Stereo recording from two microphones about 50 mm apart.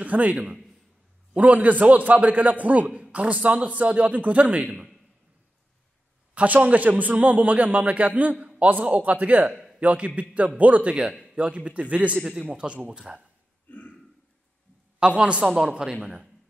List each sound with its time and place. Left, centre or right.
0.0 s a man's voice: right
6.3 s a man's voice: right
9.5 s a sound: centre
9.8 s a man's voice: right
11.1 s a sound: centre
11.3 s a man's voice: right
12.2 s a man's voice: centre
13.7 s a sound: left
15.0 s a man's voice: right